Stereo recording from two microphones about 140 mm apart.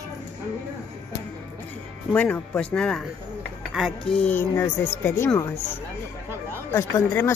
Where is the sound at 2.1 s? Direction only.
10° left (ahead or behind).